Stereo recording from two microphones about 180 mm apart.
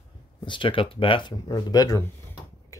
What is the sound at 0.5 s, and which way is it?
Speech, 30° left (ahead or behind).